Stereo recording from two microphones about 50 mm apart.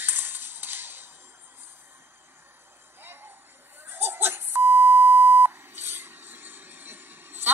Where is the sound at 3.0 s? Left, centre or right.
Right.